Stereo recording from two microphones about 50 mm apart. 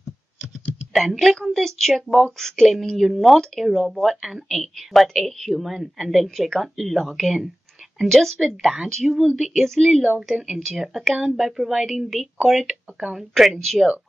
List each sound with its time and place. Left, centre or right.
0.9 s a woman's voice: centre
8.8 s a woman's voice: centre
9.8 s a woman's voice: centre